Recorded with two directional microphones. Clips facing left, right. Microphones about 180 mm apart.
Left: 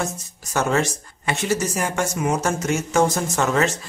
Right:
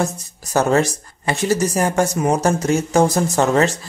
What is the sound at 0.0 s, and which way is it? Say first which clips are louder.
Speech: right 5 dB; 35° right (ahead or behind).